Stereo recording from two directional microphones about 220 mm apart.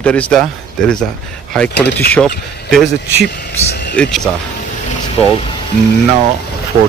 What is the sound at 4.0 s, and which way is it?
Speech, centre (ahead or behind).